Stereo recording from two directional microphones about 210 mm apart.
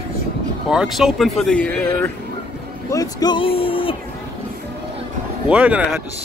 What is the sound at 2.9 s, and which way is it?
Speech, 15° left (ahead or behind).